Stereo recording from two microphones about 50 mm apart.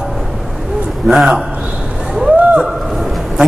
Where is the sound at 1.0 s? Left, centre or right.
Centre.